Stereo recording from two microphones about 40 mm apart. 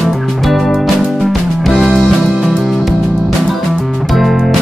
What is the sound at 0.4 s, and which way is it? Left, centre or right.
Music, centre.